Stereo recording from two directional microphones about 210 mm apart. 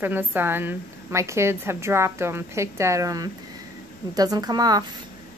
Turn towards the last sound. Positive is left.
turn(degrees=-20)  # may be behind; listen again after turning